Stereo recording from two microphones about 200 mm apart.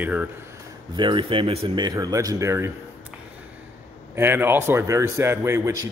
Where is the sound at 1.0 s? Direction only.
25° right (ahead or behind).